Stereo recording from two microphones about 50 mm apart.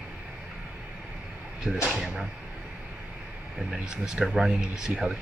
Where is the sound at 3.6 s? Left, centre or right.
Centre.